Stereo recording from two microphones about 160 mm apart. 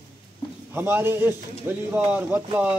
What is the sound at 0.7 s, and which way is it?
A man's voice, 15° right (ahead or behind).